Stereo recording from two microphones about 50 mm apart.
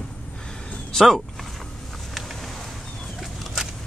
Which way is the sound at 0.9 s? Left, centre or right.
Centre.